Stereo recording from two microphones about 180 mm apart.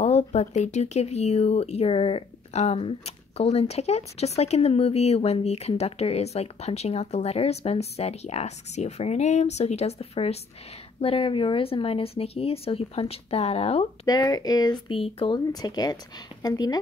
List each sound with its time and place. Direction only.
0.0 s speech: 40° left (ahead or behind)
14.0 s speech: 20° left (ahead or behind)